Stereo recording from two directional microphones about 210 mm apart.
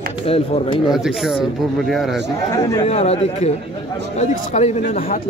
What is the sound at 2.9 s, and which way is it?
Speech, 30° left (ahead or behind).